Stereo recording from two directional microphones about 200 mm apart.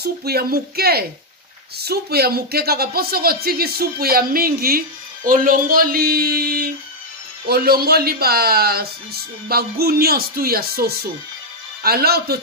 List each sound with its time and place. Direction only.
0.0 s speech: 50° right (ahead or behind)